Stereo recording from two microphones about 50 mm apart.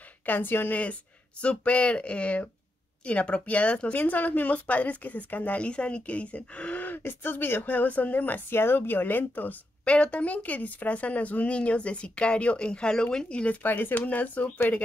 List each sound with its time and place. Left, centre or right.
0.2 s speech: left
1.4 s speech: left
3.9 s speech: left
6.8 s speech: left
8.5 s speech: left
9.8 s speech: left
13.6 s speech: left